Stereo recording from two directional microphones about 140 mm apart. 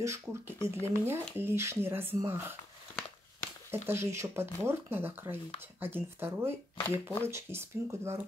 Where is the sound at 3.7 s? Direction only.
15° right (ahead or behind).